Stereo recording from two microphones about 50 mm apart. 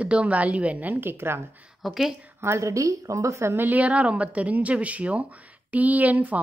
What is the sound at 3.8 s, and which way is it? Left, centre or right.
Speech, right.